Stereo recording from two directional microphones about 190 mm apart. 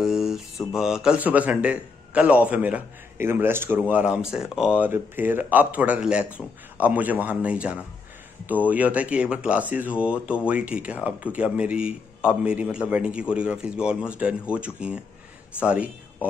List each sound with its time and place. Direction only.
0.0 s mantra: centre (ahead or behind)
0.7 s a man's voice: 5° right (ahead or behind)